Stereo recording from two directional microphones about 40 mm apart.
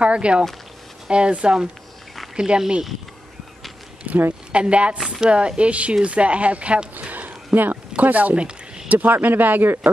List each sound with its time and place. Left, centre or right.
0.0 s speech: right
4.1 s speech: right
4.5 s speech: right
4.9 s speech: centre
5.2 s speech: right
7.1 s a sound: right
8.0 s speech: right
8.4 s a sound: right
8.8 s speech: right